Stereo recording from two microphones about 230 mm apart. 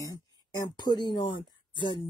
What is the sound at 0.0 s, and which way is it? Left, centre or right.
Speech, centre.